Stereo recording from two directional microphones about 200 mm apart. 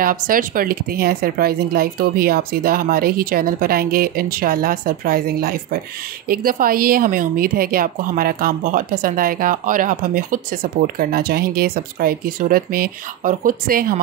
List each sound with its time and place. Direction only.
0.0 s a woman's voice: 45° right (ahead or behind)